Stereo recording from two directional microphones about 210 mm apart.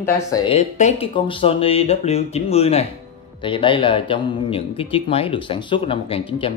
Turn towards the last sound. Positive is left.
turn(degrees=25)  # may be behind; listen again after turning